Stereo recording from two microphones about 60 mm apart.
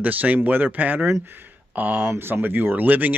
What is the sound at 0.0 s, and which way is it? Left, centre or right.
Speech, right.